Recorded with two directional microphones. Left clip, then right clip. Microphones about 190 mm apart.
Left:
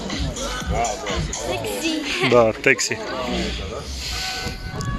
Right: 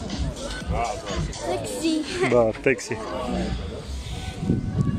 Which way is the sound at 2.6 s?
10° right (ahead or behind).